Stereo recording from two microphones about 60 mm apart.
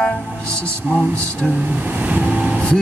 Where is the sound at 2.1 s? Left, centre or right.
Right.